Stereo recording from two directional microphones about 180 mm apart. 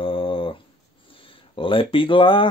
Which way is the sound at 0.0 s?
30° left (ahead or behind).